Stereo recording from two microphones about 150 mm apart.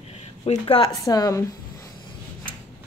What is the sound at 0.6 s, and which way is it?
Speech, 30° left (ahead or behind).